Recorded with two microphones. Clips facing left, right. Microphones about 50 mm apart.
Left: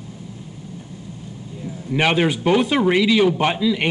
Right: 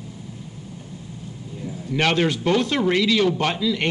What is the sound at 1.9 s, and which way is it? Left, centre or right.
Speech, centre.